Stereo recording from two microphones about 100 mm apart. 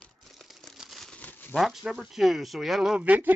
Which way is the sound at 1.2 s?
20° left (ahead or behind).